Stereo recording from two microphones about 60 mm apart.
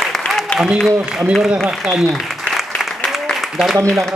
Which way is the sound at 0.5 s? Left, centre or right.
Left.